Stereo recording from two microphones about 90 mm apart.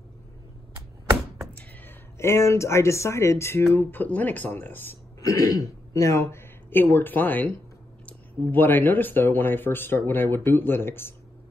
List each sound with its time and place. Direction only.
2.1 s speech: 30° left (ahead or behind)
5.2 s speech: 40° left (ahead or behind)